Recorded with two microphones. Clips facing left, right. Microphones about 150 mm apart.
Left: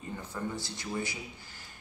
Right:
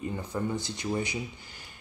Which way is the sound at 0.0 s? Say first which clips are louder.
Right 5 dB; 15° right (ahead or behind).